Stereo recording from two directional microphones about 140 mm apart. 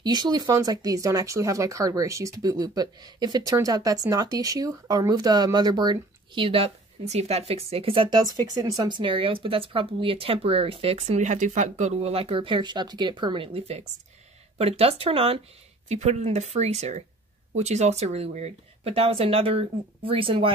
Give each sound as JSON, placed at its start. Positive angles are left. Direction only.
{"t": 0.0, "sound": "speech", "side_deg": -30}
{"t": 15.9, "sound": "speech", "side_deg": -55}